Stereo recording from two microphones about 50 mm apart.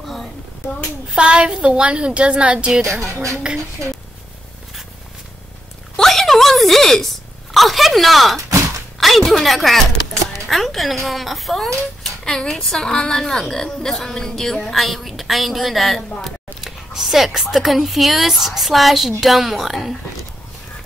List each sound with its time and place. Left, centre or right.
0.0 s a sound: centre
1.1 s a woman's voice: centre
2.9 s speech: right
5.9 s a sound: centre
7.5 s speech: centre
12.0 s a woman's voice: centre